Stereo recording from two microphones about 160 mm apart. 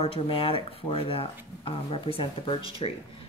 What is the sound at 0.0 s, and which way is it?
Speech, 35° left (ahead or behind).